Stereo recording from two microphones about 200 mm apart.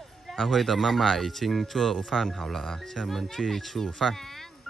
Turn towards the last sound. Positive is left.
turn(degrees=0)  # may be behind; listen again after turning